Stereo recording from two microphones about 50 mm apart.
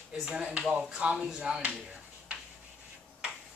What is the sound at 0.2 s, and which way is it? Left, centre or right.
Speech, centre.